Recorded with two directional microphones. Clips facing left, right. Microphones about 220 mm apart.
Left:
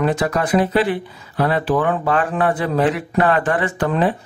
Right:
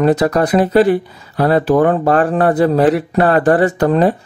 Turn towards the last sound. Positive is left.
turn(degrees=-40)  # may be behind; listen again after turning